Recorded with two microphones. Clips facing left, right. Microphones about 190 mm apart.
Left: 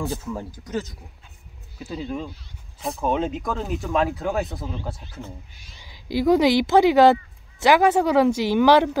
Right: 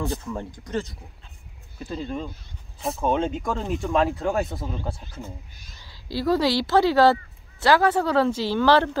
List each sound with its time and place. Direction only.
0.0 s speech: 5° left (ahead or behind)
5.8 s speech: 15° left (ahead or behind)